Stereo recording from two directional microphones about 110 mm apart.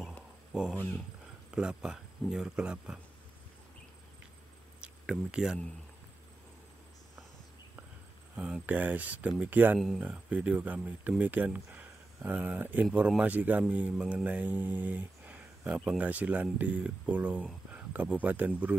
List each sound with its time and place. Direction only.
0.5 s speech: 5° right (ahead or behind)
0.7 s speech: 15° left (ahead or behind)
1.5 s speech: 5° right (ahead or behind)
4.7 s a sound: 10° right (ahead or behind)
8.4 s speech: 10° right (ahead or behind)